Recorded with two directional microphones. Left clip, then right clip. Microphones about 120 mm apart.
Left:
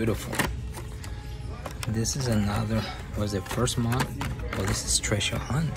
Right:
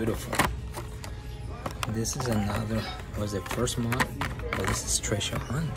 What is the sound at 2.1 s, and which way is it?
Speech, 25° right (ahead or behind).